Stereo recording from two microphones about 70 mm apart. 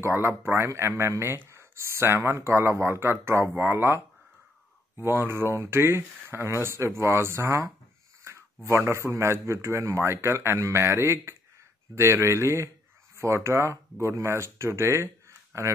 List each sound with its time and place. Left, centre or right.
0.0 s speech: right
8.2 s a sound: right
8.6 s speech: right